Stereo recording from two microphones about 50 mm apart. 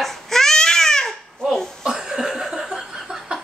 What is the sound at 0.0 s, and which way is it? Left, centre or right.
Babbling, centre.